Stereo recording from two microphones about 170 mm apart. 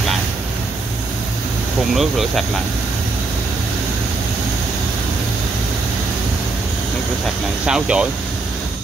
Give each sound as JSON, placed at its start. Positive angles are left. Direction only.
{"t": 2.0, "sound": "speech", "side_deg": 0}
{"t": 7.6, "sound": "speech", "side_deg": -5}